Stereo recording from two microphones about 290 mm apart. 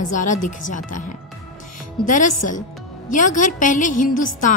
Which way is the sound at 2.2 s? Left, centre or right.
Left.